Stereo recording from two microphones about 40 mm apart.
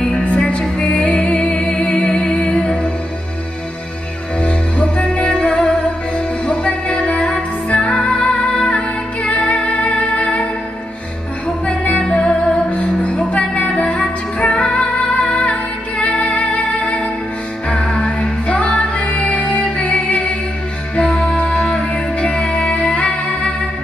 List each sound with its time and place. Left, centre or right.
0.0 s music: left
4.4 s music: left
8.4 s music: left
9.4 s music: left